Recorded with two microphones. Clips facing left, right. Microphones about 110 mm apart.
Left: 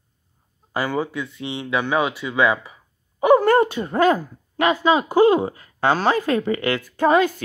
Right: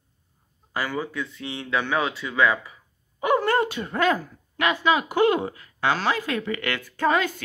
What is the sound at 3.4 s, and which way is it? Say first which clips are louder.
A woman's voice: left 6 dB; 35° left (ahead or behind).